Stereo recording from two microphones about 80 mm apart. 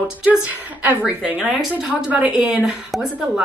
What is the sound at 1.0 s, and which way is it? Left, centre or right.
A woman's voice, centre.